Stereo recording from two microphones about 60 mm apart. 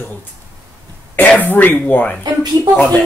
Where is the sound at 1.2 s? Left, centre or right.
Left.